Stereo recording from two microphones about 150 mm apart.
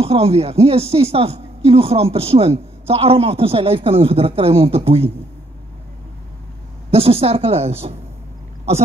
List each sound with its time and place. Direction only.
0.0 s speech: 40° right (ahead or behind)
6.9 s speech: 40° right (ahead or behind)